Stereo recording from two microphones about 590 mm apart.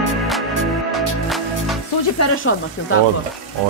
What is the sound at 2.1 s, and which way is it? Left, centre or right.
Speech, left.